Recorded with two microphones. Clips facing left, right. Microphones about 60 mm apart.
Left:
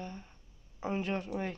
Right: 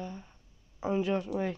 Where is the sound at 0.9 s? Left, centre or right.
Left.